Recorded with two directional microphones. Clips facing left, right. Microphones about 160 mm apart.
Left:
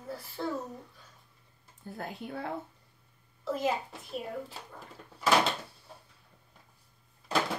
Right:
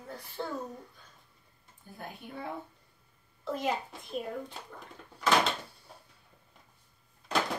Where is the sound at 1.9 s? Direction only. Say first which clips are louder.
Left 4 dB; 90° left.